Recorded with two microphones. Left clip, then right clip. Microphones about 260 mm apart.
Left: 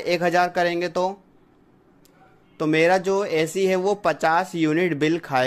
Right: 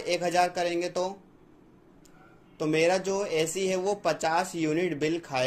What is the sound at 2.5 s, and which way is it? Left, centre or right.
Speech, left.